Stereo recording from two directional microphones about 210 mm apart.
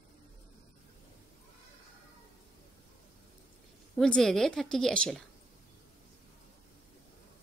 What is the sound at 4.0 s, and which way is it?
A woman's voice, 5° left (ahead or behind).